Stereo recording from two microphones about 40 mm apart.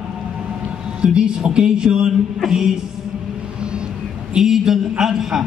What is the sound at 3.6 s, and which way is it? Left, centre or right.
Music, right.